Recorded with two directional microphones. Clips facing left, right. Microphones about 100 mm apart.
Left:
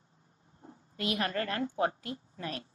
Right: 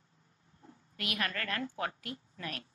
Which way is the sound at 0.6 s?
30° left (ahead or behind).